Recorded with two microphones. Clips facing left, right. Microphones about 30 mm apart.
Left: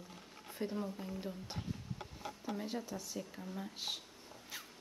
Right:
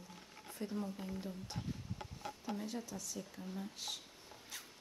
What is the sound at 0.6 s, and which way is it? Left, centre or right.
Speech, left.